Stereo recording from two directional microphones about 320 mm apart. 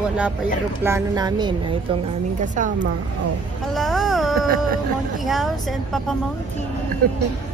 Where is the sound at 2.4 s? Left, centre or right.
Right.